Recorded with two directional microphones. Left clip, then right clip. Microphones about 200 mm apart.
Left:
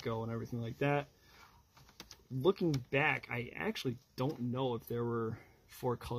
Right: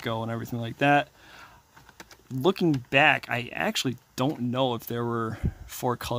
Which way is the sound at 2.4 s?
40° right (ahead or behind).